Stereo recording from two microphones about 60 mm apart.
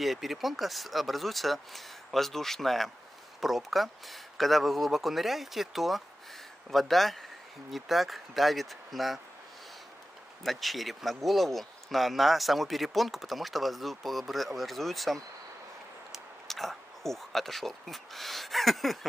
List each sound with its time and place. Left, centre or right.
0.0 s speech: centre
10.4 s speech: centre